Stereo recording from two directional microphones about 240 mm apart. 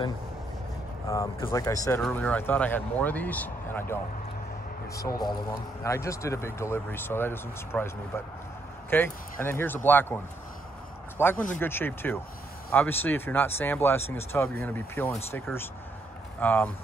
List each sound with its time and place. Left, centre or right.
1.0 s speech: centre
8.9 s speech: centre